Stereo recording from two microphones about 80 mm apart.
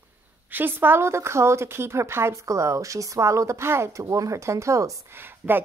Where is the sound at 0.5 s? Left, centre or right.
Right.